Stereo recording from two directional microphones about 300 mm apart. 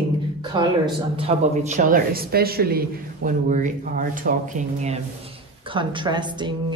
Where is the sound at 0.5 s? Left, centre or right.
Centre.